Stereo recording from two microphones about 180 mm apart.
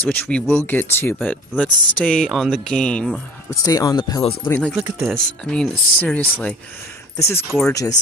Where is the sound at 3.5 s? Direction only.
20° left (ahead or behind).